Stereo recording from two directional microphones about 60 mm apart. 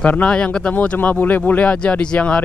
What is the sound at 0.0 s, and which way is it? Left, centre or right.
Speech, left.